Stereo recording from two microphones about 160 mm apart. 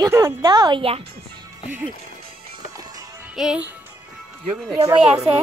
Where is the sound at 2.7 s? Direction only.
20° right (ahead or behind).